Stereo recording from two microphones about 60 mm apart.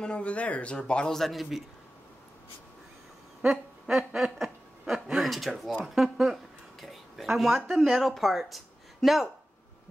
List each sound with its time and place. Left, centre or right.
0.0 s speech: centre
3.4 s speech: centre
6.1 s a sound: centre
8.0 s speech: centre